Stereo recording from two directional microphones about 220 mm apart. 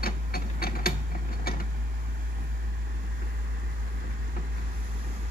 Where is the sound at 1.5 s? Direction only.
45° left (ahead or behind).